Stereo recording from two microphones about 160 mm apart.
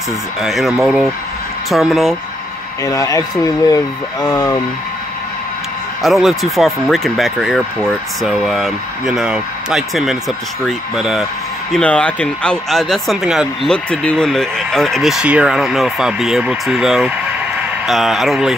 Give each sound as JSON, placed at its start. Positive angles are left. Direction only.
{"t": 0.4, "sound": "speech", "side_deg": 0}
{"t": 2.8, "sound": "speech", "side_deg": 20}
{"t": 6.0, "sound": "speech", "side_deg": 0}